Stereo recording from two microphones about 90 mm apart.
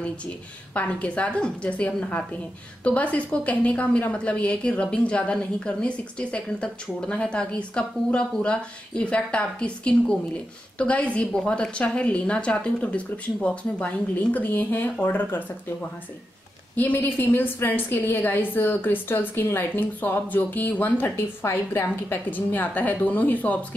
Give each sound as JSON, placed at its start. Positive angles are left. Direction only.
{"t": 0.7, "sound": "a woman's voice", "side_deg": 15}
{"t": 16.7, "sound": "a woman's voice", "side_deg": 20}